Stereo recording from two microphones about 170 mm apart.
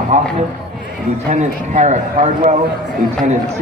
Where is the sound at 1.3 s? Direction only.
45° right (ahead or behind).